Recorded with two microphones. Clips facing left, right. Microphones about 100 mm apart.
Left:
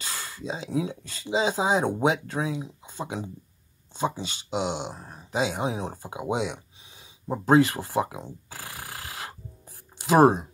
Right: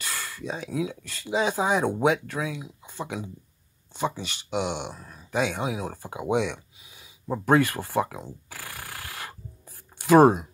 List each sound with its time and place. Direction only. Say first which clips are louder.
0.0 s speech: right 1 dB; 20° left (ahead or behind)
1.1 s speech: even; 20° left (ahead or behind)
2.4 s speech: left 2 dB; 35° left (ahead or behind)
2.8 s a sound: even; 20° left (ahead or behind)
4.0 s speech: left 1 dB; 20° left (ahead or behind)
6.9 s a sound: right 1 dB; 25° left (ahead or behind)